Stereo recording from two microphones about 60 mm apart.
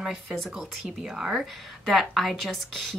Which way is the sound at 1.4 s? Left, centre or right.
Centre.